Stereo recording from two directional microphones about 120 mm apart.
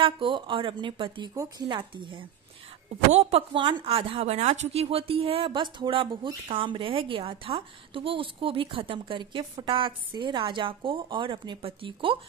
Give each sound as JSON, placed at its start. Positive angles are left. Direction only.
{"t": 0.0, "sound": "a woman's voice", "side_deg": -45}
{"t": 3.1, "sound": "a woman's voice", "side_deg": -65}
{"t": 3.5, "sound": "a woman's voice", "side_deg": -45}